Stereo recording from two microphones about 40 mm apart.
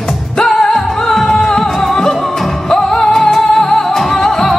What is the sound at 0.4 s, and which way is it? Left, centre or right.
Music, centre.